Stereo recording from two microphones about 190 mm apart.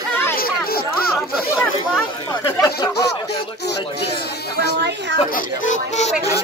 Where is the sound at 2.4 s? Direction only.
15° left (ahead or behind).